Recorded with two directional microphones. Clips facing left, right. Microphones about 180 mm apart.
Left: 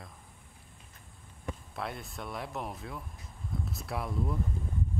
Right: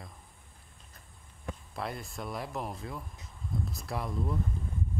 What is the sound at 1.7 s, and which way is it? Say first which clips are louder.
Speech: right 3 dB; centre (ahead or behind).